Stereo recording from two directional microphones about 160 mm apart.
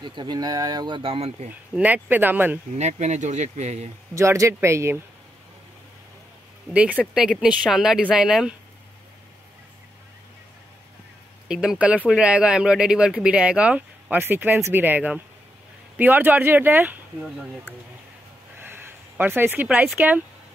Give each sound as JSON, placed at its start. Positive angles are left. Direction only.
{"t": 0.0, "sound": "speech", "side_deg": -30}
{"t": 1.8, "sound": "speech", "side_deg": -10}
{"t": 2.7, "sound": "speech", "side_deg": -45}
{"t": 4.1, "sound": "speech", "side_deg": -20}
{"t": 6.7, "sound": "speech", "side_deg": -10}
{"t": 11.4, "sound": "speech", "side_deg": -5}
{"t": 18.6, "sound": "speech", "side_deg": -15}